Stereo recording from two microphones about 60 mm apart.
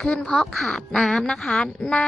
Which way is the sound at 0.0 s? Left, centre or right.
Centre.